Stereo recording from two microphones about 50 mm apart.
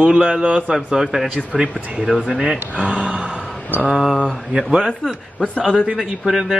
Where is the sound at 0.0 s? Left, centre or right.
Centre.